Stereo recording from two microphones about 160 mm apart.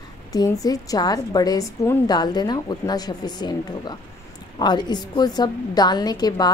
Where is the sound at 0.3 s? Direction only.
20° left (ahead or behind).